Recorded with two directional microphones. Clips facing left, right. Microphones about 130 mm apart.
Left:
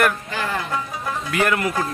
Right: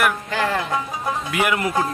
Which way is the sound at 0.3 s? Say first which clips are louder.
Right 4 dB; 90° right.